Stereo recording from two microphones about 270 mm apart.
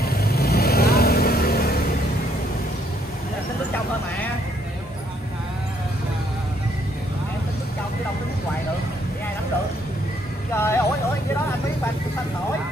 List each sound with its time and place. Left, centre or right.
0.0 s vehicle: left
10.5 s vehicle: centre